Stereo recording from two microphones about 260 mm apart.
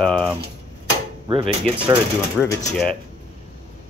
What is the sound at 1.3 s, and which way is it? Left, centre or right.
Speech, centre.